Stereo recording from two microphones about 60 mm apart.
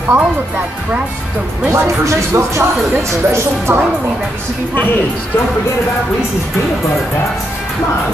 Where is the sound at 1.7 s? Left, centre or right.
Right.